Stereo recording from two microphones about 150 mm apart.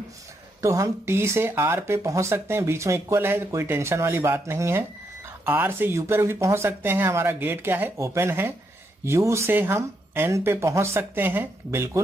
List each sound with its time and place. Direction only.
0.6 s speech: 20° right (ahead or behind)